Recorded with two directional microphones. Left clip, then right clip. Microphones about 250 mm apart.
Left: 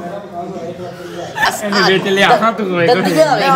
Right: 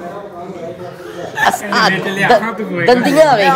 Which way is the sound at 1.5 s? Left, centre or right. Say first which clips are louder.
Right 1 dB; right.